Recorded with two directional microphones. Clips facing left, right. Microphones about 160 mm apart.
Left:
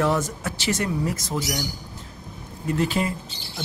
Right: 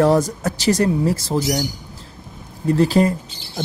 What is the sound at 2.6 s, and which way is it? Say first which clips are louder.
Speech: right 8 dB; 35° right (ahead or behind).